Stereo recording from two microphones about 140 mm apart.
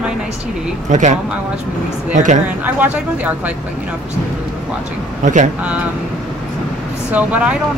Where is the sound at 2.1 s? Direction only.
60° right (ahead or behind).